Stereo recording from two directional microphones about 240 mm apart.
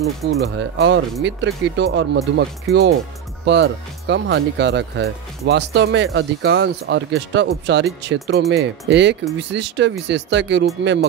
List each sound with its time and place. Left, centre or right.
0.3 s speech: right